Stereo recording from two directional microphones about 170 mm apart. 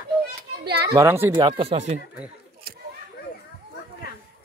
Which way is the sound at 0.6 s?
70° right (ahead or behind).